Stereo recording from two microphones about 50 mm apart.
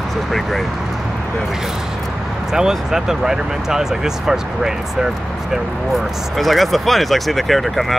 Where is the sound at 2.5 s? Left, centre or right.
Centre.